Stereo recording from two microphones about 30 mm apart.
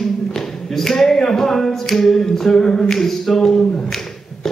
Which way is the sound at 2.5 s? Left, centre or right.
Left.